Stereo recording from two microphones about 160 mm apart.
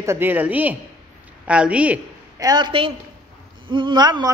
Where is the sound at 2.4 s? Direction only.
25° right (ahead or behind).